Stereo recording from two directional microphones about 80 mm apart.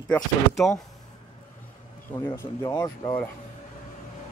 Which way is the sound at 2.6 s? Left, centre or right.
Left.